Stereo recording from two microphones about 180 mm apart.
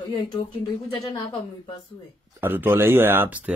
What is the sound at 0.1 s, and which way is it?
Speech, 25° left (ahead or behind).